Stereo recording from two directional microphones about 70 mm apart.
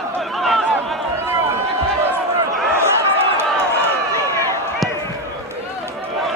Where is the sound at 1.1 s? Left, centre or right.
Right.